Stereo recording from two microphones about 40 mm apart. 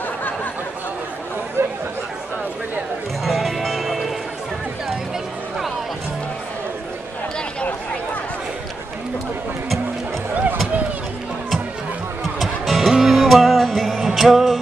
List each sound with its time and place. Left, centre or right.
1.6 s chatter: right
3.3 s music: centre
12.4 s music: centre